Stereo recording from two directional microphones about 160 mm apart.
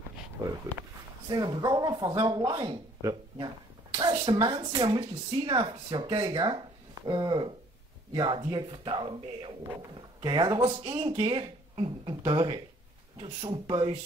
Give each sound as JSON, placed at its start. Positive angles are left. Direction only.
{"t": 1.3, "sound": "speech", "side_deg": -25}